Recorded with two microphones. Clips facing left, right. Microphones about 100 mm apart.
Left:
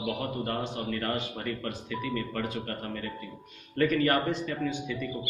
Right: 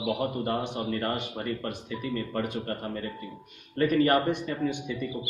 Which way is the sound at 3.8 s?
25° right (ahead or behind).